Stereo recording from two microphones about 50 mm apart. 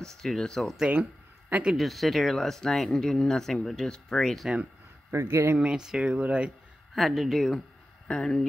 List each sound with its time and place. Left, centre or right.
0.0 s speech: centre
1.8 s speech: centre
5.1 s speech: right
5.6 s speech: centre
7.0 s speech: centre
8.1 s speech: centre